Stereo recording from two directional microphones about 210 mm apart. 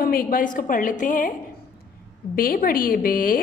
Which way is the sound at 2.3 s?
45° left (ahead or behind).